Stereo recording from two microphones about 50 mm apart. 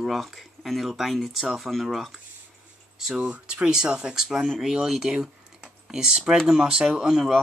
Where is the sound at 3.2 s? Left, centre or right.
Right; by 7.4 s centre.